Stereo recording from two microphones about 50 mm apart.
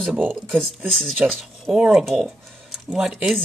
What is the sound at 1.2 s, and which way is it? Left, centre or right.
Speech, right.